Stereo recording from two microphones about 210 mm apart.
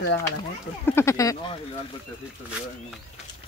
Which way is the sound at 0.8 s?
10° left (ahead or behind).